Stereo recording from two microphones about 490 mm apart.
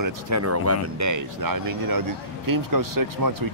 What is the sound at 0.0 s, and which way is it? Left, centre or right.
Speech, right.